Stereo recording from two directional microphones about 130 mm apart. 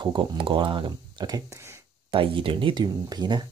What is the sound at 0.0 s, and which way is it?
Speech, 35° right (ahead or behind).